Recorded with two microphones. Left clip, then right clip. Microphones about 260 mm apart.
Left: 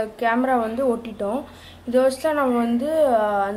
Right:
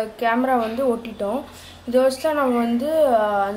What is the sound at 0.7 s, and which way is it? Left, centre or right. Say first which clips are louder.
Speech: right 1 dB; left.